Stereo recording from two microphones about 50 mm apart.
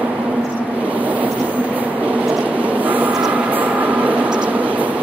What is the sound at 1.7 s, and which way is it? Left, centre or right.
Train, right.